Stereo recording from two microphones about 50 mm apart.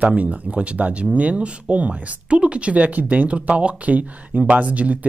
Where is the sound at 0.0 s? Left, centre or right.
Right.